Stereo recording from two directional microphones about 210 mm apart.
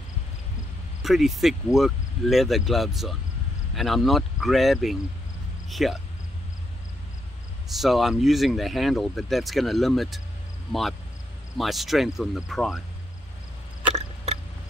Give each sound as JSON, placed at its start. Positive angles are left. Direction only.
{"t": 1.0, "sound": "speech", "side_deg": 0}
{"t": 7.7, "sound": "speech", "side_deg": 0}
{"t": 13.9, "sound": "a sound", "side_deg": -30}